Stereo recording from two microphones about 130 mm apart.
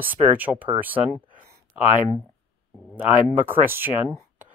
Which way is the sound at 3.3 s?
15° right (ahead or behind).